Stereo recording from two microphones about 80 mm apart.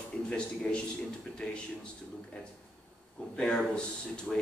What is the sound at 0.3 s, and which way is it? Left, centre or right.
Speech, centre.